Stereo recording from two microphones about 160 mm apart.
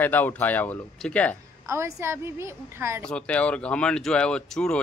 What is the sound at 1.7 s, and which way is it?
A woman's voice, 15° right (ahead or behind).